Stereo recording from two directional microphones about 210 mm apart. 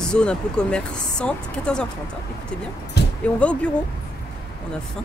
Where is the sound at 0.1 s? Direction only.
5° left (ahead or behind).